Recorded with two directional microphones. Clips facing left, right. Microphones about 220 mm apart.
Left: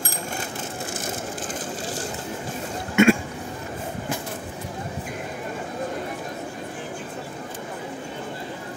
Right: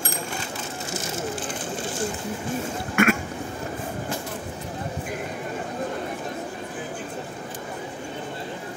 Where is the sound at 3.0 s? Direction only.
25° left (ahead or behind).